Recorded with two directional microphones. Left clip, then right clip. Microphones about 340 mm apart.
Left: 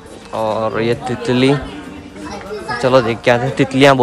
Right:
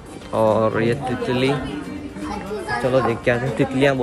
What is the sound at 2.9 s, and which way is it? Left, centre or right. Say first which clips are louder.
Speech: left 7 dB; centre.